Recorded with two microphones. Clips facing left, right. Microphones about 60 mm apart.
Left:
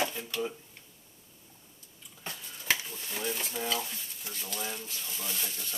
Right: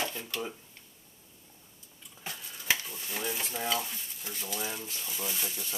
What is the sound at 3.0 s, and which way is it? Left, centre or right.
Speech, centre.